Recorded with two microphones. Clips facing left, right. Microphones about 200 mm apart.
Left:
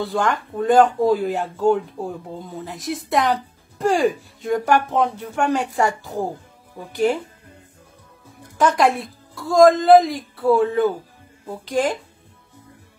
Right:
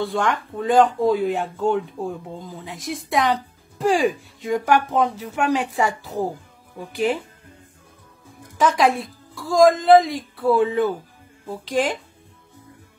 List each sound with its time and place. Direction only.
0.0 s speech: centre (ahead or behind)
8.5 s speech: centre (ahead or behind)